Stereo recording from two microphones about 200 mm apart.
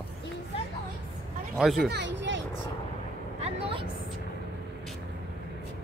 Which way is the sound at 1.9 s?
60° right (ahead or behind).